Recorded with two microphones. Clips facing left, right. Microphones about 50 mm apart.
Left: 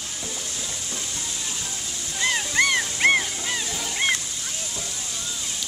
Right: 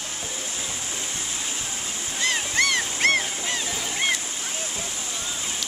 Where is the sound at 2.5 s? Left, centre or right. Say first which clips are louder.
Left 3 dB; centre.